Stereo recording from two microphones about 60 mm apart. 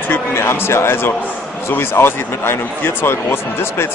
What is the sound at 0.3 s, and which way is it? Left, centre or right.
Speech, left.